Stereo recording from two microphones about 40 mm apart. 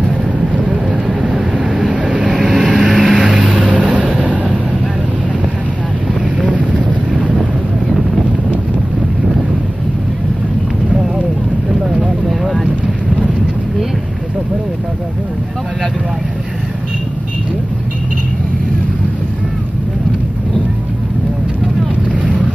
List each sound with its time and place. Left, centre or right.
0.4 s vehicle: right
2.5 s vehicle: centre
3.5 s vehicle: right
6.4 s boat: right
7.1 s wind noise: right
12.3 s boat: centre
22.1 s boat: right